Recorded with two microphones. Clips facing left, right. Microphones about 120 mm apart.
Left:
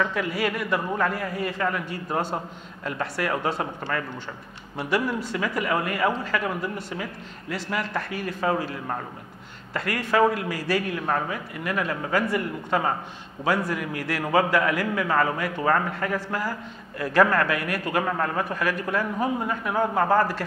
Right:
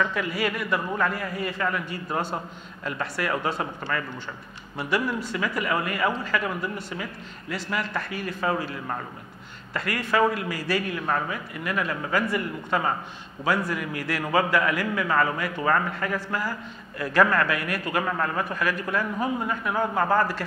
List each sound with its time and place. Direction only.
0.0 s a man's voice: 45° left (ahead or behind)